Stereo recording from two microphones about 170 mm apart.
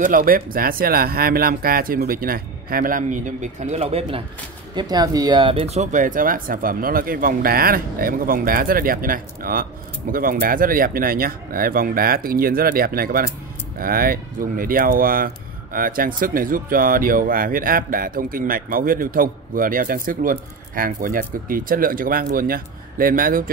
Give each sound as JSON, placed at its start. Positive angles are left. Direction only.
{"t": 0.0, "sound": "speech", "side_deg": -55}
{"t": 4.7, "sound": "speech", "side_deg": -25}